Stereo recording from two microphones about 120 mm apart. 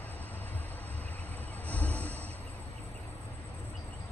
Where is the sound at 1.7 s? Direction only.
15° left (ahead or behind).